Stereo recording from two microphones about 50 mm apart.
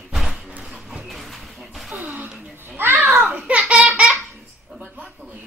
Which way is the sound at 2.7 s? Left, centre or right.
Right.